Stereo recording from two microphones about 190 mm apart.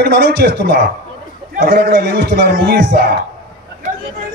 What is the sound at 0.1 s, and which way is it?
A man's voice, 60° right (ahead or behind).